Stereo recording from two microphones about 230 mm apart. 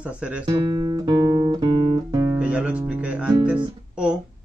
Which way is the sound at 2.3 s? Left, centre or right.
Centre.